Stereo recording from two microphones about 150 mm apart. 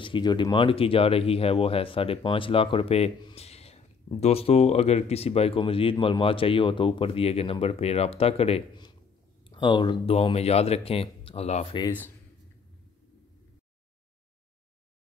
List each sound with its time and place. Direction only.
0.0 s speech: 30° left (ahead or behind)
9.4 s speech: 30° left (ahead or behind)